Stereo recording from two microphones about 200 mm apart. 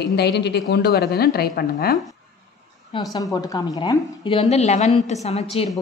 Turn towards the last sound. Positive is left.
turn(degrees=30)  # may be behind; listen again after turning